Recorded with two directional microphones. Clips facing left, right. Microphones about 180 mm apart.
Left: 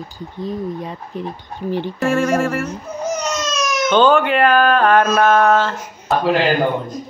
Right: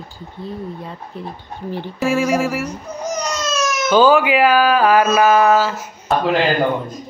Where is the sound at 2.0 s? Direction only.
5° right (ahead or behind).